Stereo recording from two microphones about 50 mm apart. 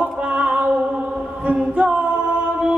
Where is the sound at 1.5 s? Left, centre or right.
Right.